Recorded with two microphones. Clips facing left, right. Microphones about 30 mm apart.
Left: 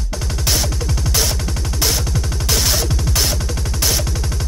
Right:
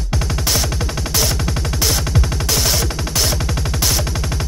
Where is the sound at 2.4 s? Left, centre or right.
Centre.